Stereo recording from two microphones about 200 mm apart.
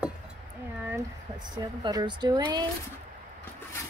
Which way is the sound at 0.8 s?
15° right (ahead or behind).